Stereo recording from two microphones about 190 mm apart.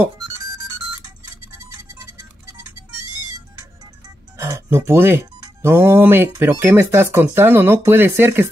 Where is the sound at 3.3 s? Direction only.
15° right (ahead or behind).